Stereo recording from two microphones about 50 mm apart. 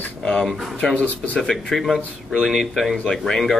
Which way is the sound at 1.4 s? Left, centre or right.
Centre.